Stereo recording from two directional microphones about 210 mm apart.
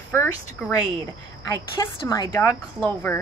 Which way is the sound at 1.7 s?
15° left (ahead or behind).